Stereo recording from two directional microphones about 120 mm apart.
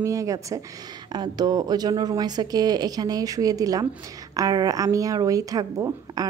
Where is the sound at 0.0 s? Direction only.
25° right (ahead or behind).